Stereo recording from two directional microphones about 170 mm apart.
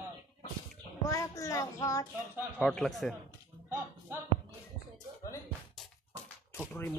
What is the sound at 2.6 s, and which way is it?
Speech, centre (ahead or behind).